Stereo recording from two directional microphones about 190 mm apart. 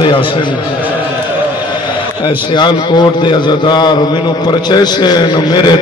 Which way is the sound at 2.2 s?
25° left (ahead or behind).